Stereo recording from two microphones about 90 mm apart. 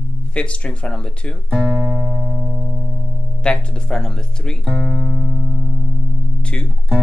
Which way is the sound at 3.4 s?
10° left (ahead or behind).